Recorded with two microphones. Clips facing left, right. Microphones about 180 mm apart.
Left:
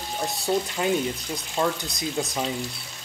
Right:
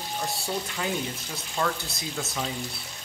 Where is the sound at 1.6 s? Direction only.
25° left (ahead or behind).